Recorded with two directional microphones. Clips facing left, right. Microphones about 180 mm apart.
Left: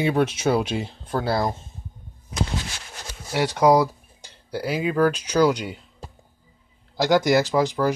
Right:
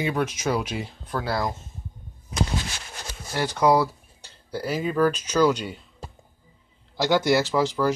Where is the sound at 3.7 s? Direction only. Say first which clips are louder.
Left 2 dB; 15° left (ahead or behind).